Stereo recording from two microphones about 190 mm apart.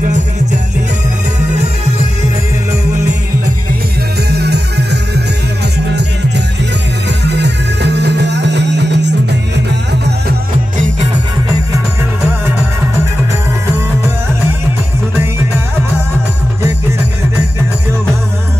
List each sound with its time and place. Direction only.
4.3 s music: 60° right (ahead or behind)
7.2 s music: 60° right (ahead or behind)